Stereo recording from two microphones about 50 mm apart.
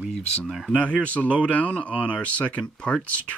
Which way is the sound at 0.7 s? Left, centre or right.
Left.